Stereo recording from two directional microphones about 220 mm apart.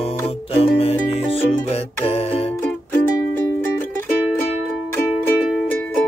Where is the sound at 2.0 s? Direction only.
25° left (ahead or behind).